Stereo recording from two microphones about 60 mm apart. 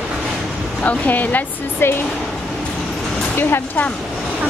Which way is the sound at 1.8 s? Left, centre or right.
Left.